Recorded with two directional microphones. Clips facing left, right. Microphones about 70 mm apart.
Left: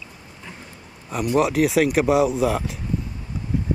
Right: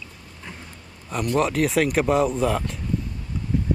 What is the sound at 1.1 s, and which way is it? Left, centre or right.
Speech, centre.